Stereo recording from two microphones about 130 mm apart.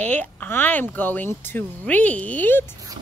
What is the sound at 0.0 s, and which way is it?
Speech, 10° left (ahead or behind).